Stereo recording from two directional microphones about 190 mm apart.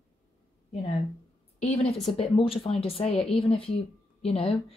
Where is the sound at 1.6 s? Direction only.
35° left (ahead or behind).